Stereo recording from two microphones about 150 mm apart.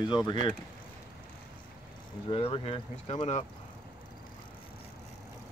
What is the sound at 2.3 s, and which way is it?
Speech, 40° left (ahead or behind).